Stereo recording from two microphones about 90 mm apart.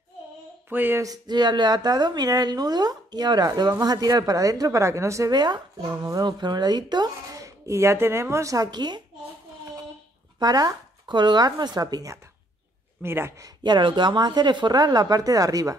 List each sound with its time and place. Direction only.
0.7 s speech: 20° right (ahead or behind)
1.0 s a woman's voice: 45° right (ahead or behind)
5.3 s a woman's voice: 50° right (ahead or behind)
5.9 s a woman's voice: 35° right (ahead or behind)
6.2 s speech: 50° right (ahead or behind); by 8.6 s 35° right (ahead or behind)
8.6 s a woman's voice: 55° right (ahead or behind)
10.4 s a woman's voice: 45° right (ahead or behind)
13.0 s speech: 25° right (ahead or behind)
13.5 s a woman's voice: 55° right (ahead or behind)